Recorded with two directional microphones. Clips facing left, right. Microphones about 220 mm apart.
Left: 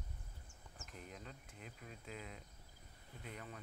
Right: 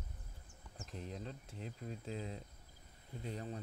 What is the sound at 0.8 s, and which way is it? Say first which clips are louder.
Speech: right 7 dB; 30° right (ahead or behind).